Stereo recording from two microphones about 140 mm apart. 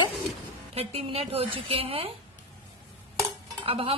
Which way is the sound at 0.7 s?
45° right (ahead or behind).